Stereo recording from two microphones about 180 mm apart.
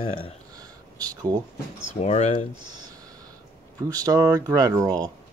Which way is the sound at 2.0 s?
35° left (ahead or behind).